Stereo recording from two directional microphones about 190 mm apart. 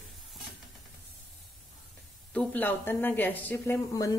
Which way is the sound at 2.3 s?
5° left (ahead or behind).